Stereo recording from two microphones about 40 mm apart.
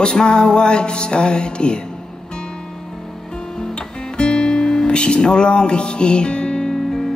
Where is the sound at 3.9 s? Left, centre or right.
Left.